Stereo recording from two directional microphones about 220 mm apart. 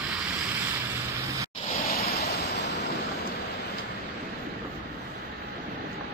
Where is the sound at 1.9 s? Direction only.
45° left (ahead or behind).